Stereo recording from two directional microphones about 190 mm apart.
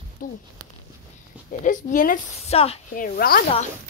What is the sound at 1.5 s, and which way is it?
A woman's voice, 45° left (ahead or behind).